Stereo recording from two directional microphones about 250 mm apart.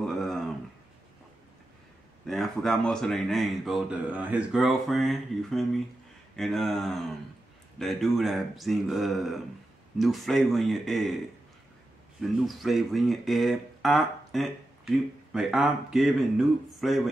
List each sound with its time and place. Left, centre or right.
0.0 s a sound: centre
2.2 s speech: centre
12.2 s speech: centre